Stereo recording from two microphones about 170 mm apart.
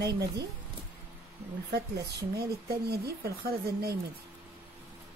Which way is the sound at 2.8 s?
65° right (ahead or behind).